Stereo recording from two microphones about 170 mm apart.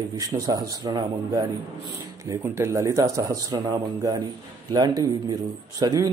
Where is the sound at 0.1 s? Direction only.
20° right (ahead or behind).